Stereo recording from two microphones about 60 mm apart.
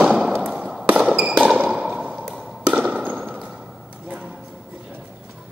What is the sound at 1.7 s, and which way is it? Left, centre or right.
Ping, centre.